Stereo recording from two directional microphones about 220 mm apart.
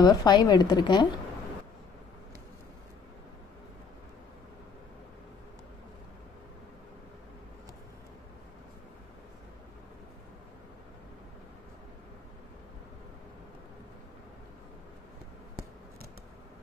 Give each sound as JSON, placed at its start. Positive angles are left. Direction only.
{"t": 0.0, "sound": "a woman's voice", "side_deg": 20}